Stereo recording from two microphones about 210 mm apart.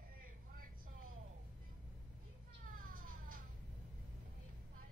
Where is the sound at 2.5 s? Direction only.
40° right (ahead or behind).